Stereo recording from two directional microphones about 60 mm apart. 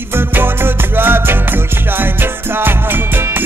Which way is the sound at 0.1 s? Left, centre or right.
Right.